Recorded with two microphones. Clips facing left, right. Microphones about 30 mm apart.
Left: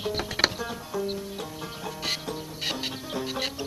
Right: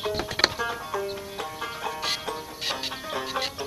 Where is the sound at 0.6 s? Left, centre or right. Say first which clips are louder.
Right 3 dB; right.